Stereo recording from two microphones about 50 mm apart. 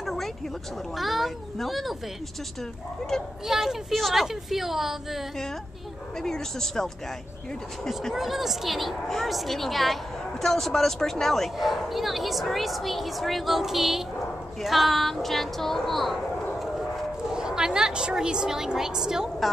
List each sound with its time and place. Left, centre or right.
0.0 s a sound: centre
0.9 s a woman's voice: centre
3.4 s a woman's voice: centre
6.2 s speech: centre
8.1 s a woman's voice: centre
17.3 s a woman's voice: centre